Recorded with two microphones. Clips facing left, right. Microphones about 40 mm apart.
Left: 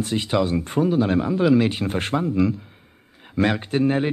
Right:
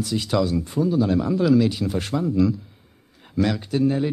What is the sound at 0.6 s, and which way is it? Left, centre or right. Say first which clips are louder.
Speech: left 1 dB; left.